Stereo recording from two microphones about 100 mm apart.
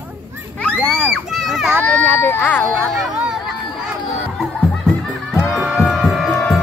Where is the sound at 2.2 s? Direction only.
20° left (ahead or behind).